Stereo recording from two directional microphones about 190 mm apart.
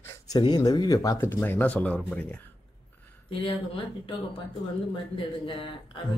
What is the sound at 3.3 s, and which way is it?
Speech, 30° left (ahead or behind).